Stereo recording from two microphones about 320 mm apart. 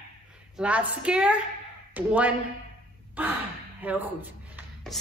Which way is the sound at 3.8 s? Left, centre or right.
Centre.